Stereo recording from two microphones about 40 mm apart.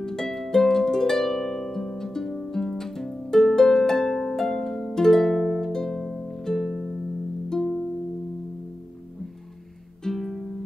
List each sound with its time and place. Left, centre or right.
0.0 s harp: centre
7.4 s music: centre
10.0 s music: centre